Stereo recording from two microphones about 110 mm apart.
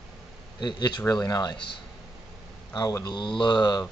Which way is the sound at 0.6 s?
40° left (ahead or behind).